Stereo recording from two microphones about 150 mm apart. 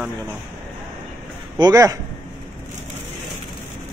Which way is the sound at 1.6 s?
25° right (ahead or behind).